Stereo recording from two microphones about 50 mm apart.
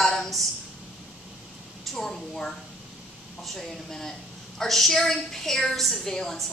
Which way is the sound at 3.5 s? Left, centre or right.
Centre.